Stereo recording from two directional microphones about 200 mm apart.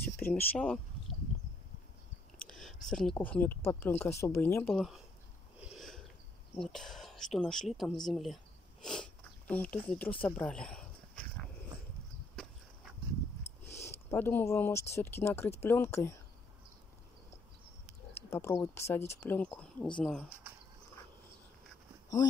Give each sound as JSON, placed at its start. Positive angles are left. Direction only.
{"t": 0.0, "sound": "speech", "side_deg": 10}
{"t": 2.3, "sound": "speech", "side_deg": 5}
{"t": 6.6, "sound": "speech", "side_deg": 0}
{"t": 8.8, "sound": "sniff", "side_deg": 5}
{"t": 10.2, "sound": "a sound", "side_deg": 5}
{"t": 13.7, "sound": "a sound", "side_deg": 10}
{"t": 15.0, "sound": "speech", "side_deg": 10}
{"t": 18.3, "sound": "speech", "side_deg": 15}